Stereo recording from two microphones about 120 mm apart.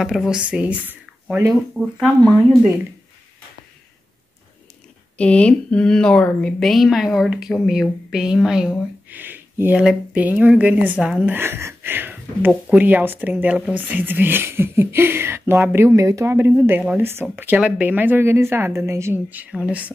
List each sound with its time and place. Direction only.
0.0 s speech: 5° right (ahead or behind)
1.5 s speech: centre (ahead or behind)
5.1 s speech: 10° left (ahead or behind)
9.1 s speech: 15° right (ahead or behind)
11.3 s speech: 20° right (ahead or behind)